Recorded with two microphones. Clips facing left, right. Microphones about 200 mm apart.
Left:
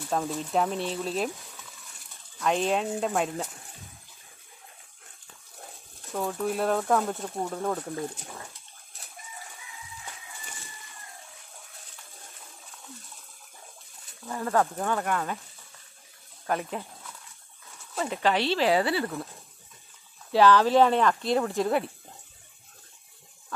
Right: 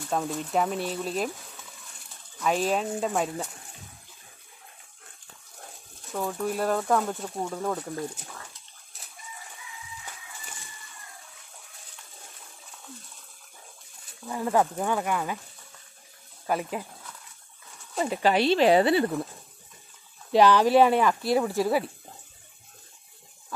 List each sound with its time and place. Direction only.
0.1 s speech: centre (ahead or behind)
2.4 s speech: centre (ahead or behind)
6.1 s speech: centre (ahead or behind)
7.9 s speech: 15° left (ahead or behind)
14.2 s speech: 15° right (ahead or behind)
16.4 s speech: 5° right (ahead or behind)
17.9 s speech: 10° right (ahead or behind)
20.3 s speech: 15° right (ahead or behind)